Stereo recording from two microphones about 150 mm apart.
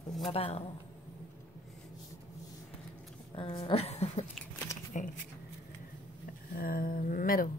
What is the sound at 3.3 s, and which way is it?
Speech, 35° left (ahead or behind).